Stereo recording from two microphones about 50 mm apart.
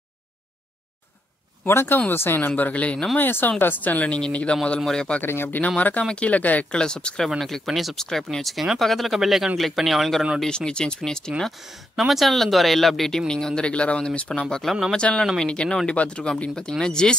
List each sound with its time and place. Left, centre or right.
1.7 s speech: left
2.5 s speech: left
3.2 s speech: left
4.7 s speech: centre
5.2 s speech: left
5.8 s speech: left
6.7 s speech: centre
7.2 s speech: centre
8.0 s speech: centre
10.4 s speech: centre
12.0 s speech: centre